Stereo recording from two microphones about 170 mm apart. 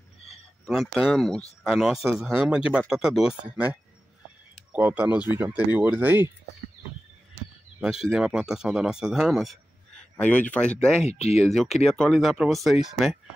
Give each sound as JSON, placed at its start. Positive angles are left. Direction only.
{"t": 0.7, "sound": "speech", "side_deg": 0}
{"t": 4.7, "sound": "speech", "side_deg": -10}
{"t": 7.8, "sound": "speech", "side_deg": -5}
{"t": 11.1, "sound": "speech", "side_deg": 40}
{"t": 11.5, "sound": "speech", "side_deg": 0}